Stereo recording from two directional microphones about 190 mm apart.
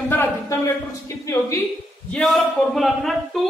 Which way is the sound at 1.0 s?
15° left (ahead or behind).